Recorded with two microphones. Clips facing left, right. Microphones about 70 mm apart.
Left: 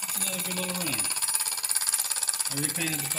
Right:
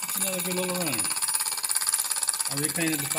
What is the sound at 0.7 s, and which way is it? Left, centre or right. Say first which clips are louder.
Speech: right 3 dB; right.